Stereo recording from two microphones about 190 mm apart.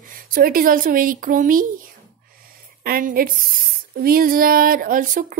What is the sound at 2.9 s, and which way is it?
Speech, 50° right (ahead or behind).